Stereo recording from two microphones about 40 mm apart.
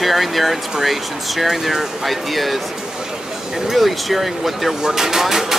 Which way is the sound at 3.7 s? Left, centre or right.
Centre.